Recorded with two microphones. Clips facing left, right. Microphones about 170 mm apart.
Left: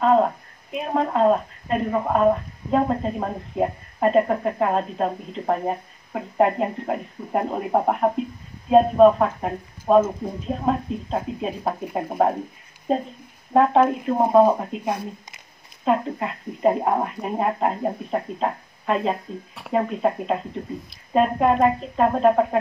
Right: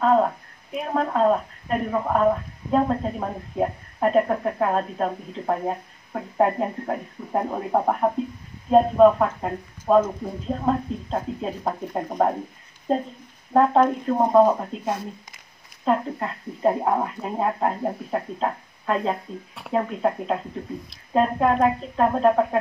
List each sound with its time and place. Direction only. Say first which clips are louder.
0.0 s a sound: left 1 dB; 15° left (ahead or behind)
1.9 s speech: left 2 dB; 10° left (ahead or behind)
13.5 s speech: left 1 dB; 10° left (ahead or behind)